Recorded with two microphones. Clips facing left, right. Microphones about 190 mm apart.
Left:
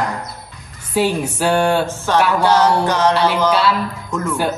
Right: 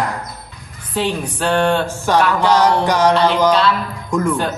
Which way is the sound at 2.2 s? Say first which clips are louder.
Left 1 dB; 10° left (ahead or behind).